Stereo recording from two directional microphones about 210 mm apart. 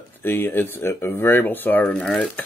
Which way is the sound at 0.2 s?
10° left (ahead or behind).